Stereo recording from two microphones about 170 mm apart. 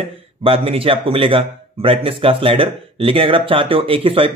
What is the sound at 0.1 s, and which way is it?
A man's voice, 35° right (ahead or behind).